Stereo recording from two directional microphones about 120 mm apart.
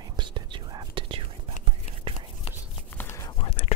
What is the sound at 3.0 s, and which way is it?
Whispering, 20° left (ahead or behind).